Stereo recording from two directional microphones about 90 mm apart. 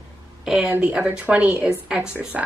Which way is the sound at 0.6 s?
15° right (ahead or behind).